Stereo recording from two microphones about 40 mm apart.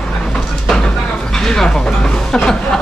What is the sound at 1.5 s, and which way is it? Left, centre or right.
Speech, centre.